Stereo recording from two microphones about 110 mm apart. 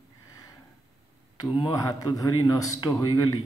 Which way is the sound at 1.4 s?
30° left (ahead or behind).